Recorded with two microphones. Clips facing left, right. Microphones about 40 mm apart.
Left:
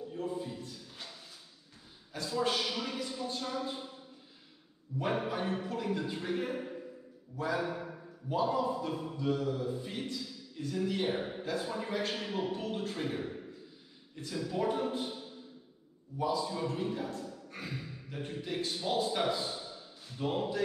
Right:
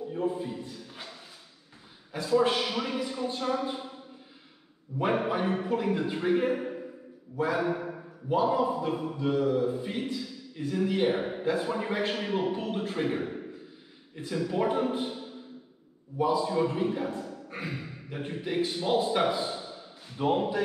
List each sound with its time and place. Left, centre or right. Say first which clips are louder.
0.1 s a man's voice: right 7 dB; right
4.9 s a man's voice: right 6 dB; right